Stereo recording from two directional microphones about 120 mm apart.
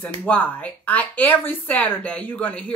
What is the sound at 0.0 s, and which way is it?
Speech, 15° left (ahead or behind).